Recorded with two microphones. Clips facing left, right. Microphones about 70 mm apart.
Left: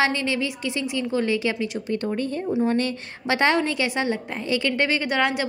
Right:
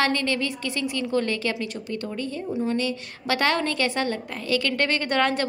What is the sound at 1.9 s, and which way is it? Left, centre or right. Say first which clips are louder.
A woman's voice: left 6 dB; left.